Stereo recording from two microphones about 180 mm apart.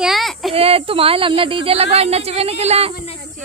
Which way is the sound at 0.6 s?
35° right (ahead or behind).